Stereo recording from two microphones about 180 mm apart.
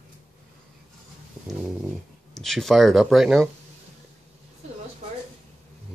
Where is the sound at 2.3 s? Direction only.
Centre (ahead or behind).